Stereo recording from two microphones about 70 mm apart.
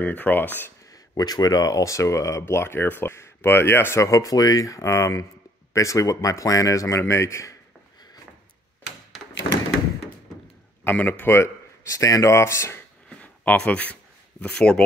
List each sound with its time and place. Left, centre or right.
0.0 s speech: left
1.1 s speech: left
4.0 s speech: left
11.0 s speech: left
13.2 s speech: centre